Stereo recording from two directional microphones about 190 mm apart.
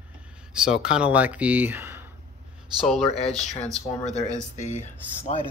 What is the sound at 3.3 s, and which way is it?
Speech, 20° right (ahead or behind).